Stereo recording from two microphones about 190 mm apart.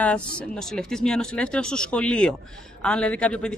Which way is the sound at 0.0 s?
5° left (ahead or behind).